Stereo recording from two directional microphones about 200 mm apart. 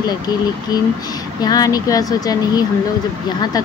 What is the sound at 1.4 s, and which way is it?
Speech, 20° left (ahead or behind).